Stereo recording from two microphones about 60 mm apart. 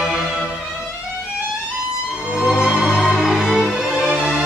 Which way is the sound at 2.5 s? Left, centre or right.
Centre.